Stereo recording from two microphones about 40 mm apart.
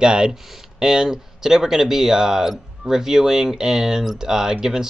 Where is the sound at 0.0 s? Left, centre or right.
Right.